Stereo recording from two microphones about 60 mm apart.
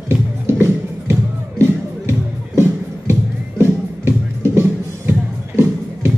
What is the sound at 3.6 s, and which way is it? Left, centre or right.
Music, right.